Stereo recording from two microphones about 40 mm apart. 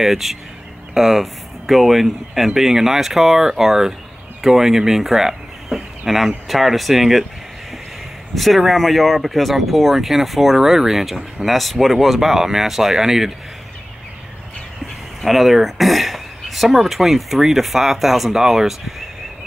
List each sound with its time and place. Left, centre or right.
0.0 s speech: centre
8.4 s speech: centre
15.2 s speech: centre